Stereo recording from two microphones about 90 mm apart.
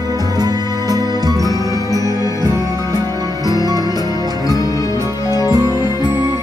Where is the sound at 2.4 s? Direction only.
40° right (ahead or behind).